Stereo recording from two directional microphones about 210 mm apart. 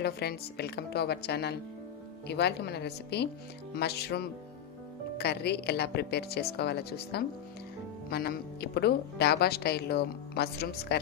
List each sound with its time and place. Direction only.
0.0 s speech: 50° left (ahead or behind)